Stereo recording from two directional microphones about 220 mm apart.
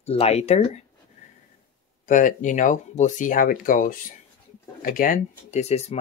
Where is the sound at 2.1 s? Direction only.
35° left (ahead or behind).